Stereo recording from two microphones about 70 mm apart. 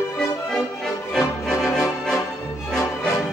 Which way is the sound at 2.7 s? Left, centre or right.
Centre.